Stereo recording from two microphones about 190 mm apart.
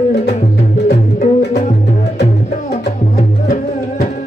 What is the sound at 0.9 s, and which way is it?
Music, 35° left (ahead or behind).